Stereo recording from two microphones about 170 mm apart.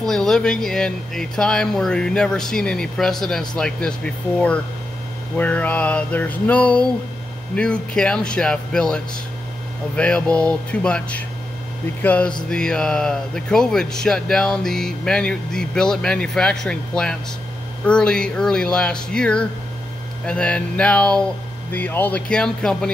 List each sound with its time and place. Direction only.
0.0 s speech: centre (ahead or behind)
5.4 s music: 10° left (ahead or behind)
7.5 s speech: 5° left (ahead or behind)
9.9 s music: 5° left (ahead or behind)
12.4 s speech: 5° left (ahead or behind)
20.2 s music: 5° left (ahead or behind)